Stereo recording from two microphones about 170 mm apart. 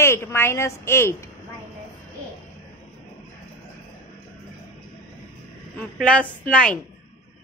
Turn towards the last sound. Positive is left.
turn(degrees=5)  # may be behind; listen again after turning